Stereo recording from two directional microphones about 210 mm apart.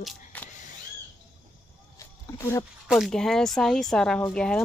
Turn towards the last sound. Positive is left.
turn(degrees=5)  # may be behind; listen again after turning